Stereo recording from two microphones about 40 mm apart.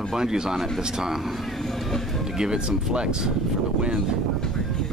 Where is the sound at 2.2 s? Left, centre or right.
Centre.